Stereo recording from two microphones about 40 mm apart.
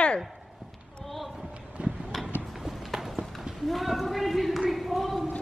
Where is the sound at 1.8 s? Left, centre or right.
Right.